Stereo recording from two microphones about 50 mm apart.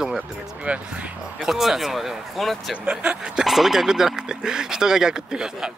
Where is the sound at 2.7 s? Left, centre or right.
Right.